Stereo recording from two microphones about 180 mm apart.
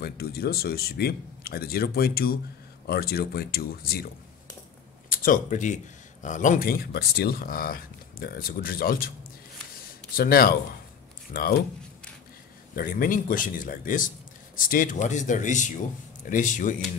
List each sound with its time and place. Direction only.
0.0 s speech: 60° left (ahead or behind)
5.1 s speech: 50° left (ahead or behind)
10.1 s speech: 55° left (ahead or behind)
12.7 s speech: 50° left (ahead or behind)